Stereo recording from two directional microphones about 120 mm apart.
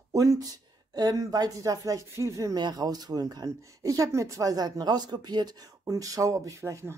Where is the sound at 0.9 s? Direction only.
30° right (ahead or behind).